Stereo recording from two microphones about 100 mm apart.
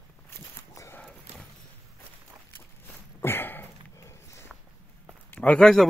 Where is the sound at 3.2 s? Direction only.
20° left (ahead or behind).